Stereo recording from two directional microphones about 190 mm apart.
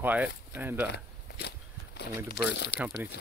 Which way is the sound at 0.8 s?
60° left (ahead or behind).